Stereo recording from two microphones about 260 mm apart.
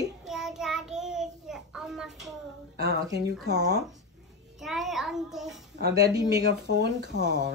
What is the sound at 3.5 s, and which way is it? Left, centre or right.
Speech, right.